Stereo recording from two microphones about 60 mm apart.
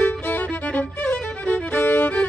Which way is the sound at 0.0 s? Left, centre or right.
Left.